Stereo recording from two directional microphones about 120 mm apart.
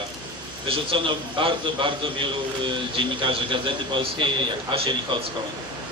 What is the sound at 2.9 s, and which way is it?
A man's voice, 45° right (ahead or behind).